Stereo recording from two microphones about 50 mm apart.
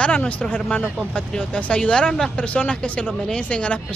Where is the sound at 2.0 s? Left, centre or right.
Centre.